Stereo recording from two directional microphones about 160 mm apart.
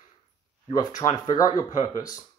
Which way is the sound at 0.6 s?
25° left (ahead or behind).